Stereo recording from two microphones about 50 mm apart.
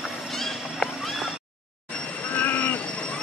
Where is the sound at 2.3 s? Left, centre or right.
Left.